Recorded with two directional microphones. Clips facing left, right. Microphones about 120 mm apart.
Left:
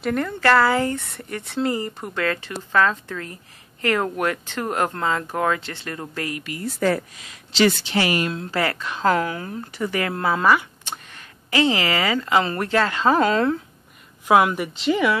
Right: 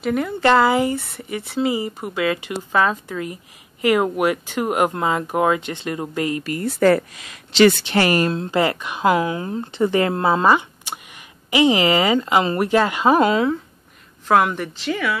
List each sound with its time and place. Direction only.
0.0 s speech: 5° right (ahead or behind)
0.4 s speech: 20° right (ahead or behind)
6.5 s speech: 60° right (ahead or behind)
8.5 s speech: 20° right (ahead or behind)
10.9 s speech: 15° right (ahead or behind)
14.2 s a woman's voice: 5° left (ahead or behind)